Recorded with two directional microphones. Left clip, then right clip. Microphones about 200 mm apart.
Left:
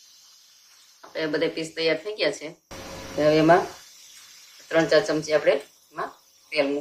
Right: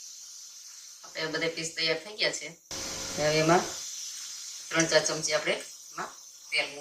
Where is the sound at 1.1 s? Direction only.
50° left (ahead or behind).